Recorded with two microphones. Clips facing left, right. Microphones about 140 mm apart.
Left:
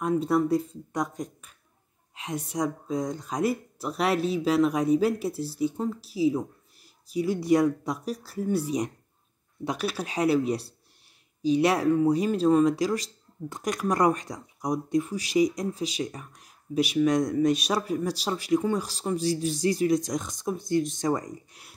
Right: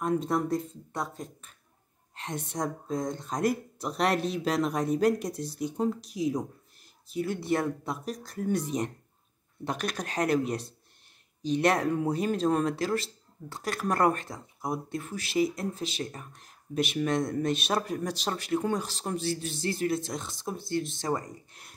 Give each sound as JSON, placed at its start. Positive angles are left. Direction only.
{"t": 0.0, "sound": "speech", "side_deg": 10}
{"t": 2.1, "sound": "speech", "side_deg": 5}
{"t": 21.0, "sound": "speech", "side_deg": 15}